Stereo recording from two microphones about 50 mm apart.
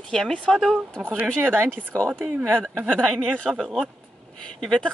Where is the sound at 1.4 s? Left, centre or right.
Right.